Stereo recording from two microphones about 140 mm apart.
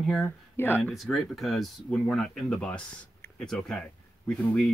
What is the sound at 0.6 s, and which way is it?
Speech, 15° left (ahead or behind).